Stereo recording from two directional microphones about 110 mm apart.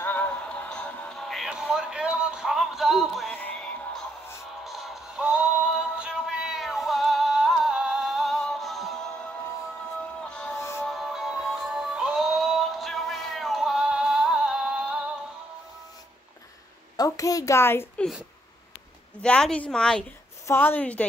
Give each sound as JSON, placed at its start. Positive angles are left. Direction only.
{"t": 0.0, "sound": "music", "side_deg": 15}
{"t": 3.3, "sound": "music", "side_deg": 10}
{"t": 4.6, "sound": "synthetic singing", "side_deg": 0}
{"t": 10.6, "sound": "music", "side_deg": 25}
{"t": 10.9, "sound": "music", "side_deg": -5}
{"t": 16.9, "sound": "a sound", "side_deg": 35}
{"t": 19.2, "sound": "a woman's voice", "side_deg": 10}
{"t": 20.4, "sound": "a woman's voice", "side_deg": 20}